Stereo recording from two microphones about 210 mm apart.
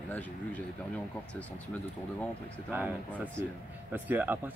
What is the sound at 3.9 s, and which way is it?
Speech, 10° right (ahead or behind).